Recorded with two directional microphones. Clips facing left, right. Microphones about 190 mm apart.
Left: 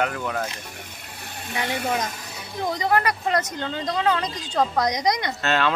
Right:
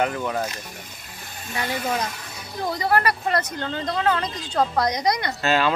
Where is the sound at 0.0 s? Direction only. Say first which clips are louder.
Right 2 dB; 5° right (ahead or behind).